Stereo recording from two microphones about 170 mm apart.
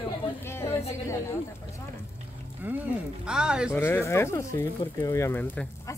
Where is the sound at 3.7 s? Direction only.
10° left (ahead or behind).